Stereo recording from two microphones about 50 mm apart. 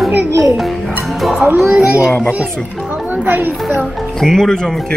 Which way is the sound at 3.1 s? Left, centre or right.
Right.